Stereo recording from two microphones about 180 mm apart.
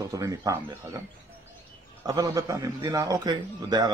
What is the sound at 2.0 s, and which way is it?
Speech, 15° right (ahead or behind).